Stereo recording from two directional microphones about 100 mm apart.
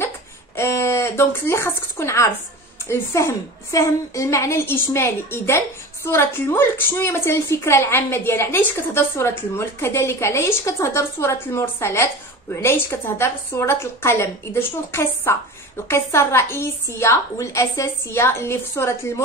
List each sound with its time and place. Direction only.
0.6 s a woman's voice: 25° left (ahead or behind)